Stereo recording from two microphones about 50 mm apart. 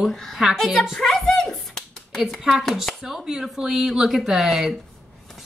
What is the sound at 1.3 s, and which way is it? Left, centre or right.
Finger snapping, centre.